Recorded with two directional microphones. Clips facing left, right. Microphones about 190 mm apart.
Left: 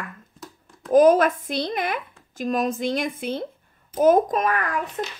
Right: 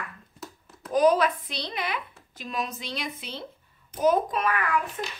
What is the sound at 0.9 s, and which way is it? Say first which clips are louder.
A woman's voice: left 6 dB; 50° left (ahead or behind).